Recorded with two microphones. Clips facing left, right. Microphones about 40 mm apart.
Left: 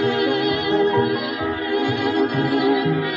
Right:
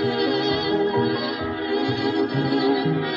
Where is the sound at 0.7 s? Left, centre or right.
Left.